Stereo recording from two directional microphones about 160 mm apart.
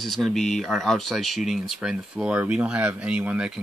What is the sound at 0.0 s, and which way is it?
Speech, centre (ahead or behind).